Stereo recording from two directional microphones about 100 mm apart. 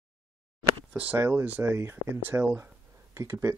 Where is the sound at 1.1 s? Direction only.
25° right (ahead or behind).